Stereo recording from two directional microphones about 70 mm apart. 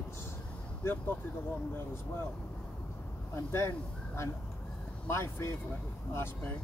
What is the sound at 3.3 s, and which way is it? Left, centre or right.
Speech, left.